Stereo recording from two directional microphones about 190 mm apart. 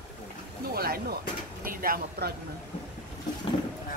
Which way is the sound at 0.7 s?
55° right (ahead or behind).